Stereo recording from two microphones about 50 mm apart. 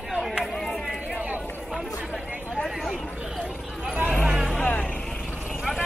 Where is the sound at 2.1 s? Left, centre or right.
Right.